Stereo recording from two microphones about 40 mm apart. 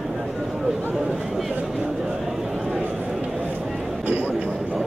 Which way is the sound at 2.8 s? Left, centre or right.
Right.